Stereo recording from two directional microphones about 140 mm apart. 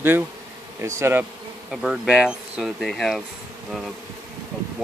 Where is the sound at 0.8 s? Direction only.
20° right (ahead or behind).